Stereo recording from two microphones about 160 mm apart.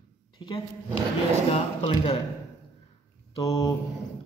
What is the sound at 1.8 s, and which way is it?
Speech, 30° left (ahead or behind).